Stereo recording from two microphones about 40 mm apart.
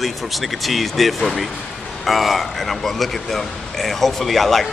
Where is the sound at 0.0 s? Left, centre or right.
Centre.